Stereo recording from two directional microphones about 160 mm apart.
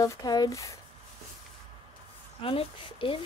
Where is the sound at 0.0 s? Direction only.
20° left (ahead or behind).